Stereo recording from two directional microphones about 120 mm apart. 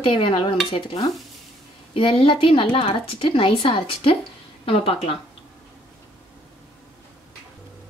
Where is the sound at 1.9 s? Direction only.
50° left (ahead or behind).